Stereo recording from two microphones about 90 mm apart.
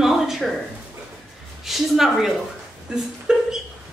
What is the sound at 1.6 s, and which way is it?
Speech, 5° right (ahead or behind).